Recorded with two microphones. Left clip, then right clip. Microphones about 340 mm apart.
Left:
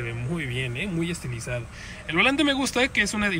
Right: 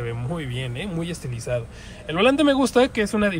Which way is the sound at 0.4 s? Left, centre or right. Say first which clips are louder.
Left 2 dB; right.